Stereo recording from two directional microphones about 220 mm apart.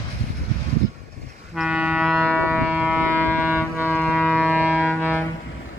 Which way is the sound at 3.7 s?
10° left (ahead or behind).